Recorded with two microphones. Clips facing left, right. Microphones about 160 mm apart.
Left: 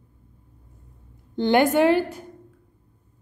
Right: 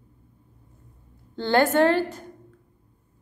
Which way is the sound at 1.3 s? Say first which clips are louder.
Left 2 dB; 15° left (ahead or behind).